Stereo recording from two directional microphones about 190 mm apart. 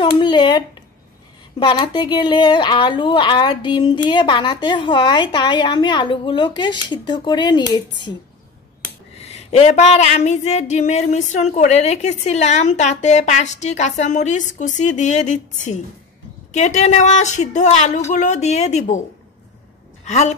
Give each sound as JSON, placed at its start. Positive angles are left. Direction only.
{"t": 0.0, "sound": "a woman's voice", "side_deg": 25}
{"t": 9.2, "sound": "speech", "side_deg": 35}
{"t": 20.1, "sound": "speech", "side_deg": 35}